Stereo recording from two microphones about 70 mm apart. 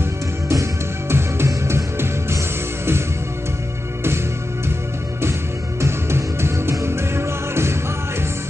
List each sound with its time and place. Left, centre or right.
0.0 s music: right
5.8 s music: right